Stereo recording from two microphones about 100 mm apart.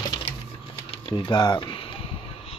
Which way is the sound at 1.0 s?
50° left (ahead or behind).